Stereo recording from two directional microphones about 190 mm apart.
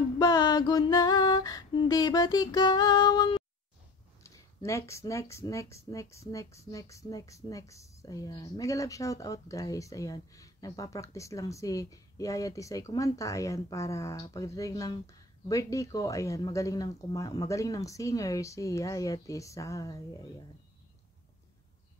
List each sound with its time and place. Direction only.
0.2 s female singing: 20° left (ahead or behind)
4.2 s speech: 15° left (ahead or behind)